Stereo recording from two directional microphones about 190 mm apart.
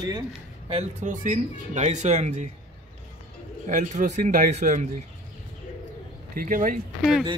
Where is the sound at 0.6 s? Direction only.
35° right (ahead or behind).